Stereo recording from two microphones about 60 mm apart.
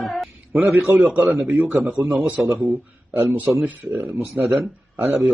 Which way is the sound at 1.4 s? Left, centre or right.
Right.